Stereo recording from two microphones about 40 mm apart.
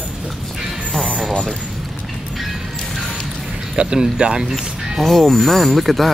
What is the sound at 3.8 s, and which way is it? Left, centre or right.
Speech, centre.